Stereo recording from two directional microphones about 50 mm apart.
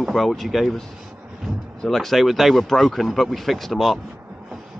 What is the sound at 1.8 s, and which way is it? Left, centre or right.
A man's voice, centre.